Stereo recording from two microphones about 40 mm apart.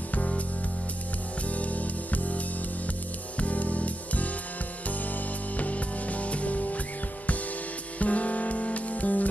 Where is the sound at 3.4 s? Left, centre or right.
Left.